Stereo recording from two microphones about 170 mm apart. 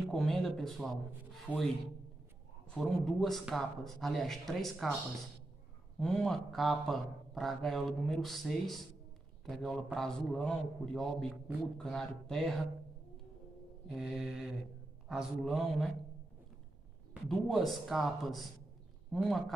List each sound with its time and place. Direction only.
0.0 s a man's voice: centre (ahead or behind)
2.7 s a man's voice: 5° left (ahead or behind)
5.9 s a man's voice: 5° left (ahead or behind)
13.8 s a man's voice: centre (ahead or behind)
17.1 s a man's voice: centre (ahead or behind)